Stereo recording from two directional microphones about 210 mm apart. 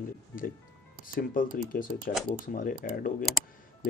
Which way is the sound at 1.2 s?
40° left (ahead or behind).